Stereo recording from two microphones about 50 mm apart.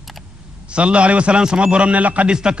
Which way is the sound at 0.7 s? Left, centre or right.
Right.